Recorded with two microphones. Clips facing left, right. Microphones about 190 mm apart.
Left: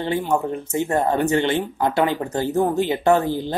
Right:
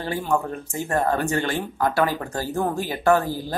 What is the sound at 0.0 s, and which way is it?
A woman's voice, 20° left (ahead or behind).